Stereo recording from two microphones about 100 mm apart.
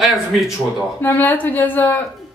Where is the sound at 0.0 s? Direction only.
Centre (ahead or behind).